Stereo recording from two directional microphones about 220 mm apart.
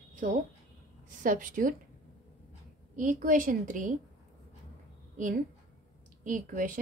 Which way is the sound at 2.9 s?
35° right (ahead or behind).